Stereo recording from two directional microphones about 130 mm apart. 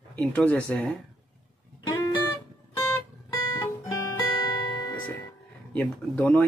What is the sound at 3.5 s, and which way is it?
Music, 25° left (ahead or behind).